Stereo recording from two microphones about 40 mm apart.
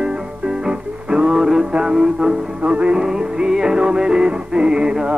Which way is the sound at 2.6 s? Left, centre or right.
Right.